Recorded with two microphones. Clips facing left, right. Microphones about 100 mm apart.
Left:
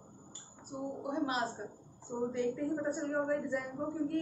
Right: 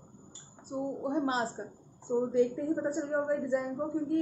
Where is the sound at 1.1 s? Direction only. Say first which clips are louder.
Right 2 dB; 30° right (ahead or behind).